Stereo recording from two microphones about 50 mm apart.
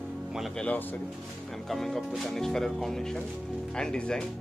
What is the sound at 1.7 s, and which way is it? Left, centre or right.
Speech, centre.